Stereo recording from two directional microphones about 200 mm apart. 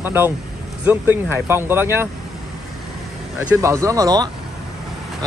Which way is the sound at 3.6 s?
15° right (ahead or behind).